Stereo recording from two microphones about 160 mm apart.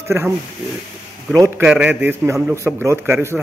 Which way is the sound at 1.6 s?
5° right (ahead or behind).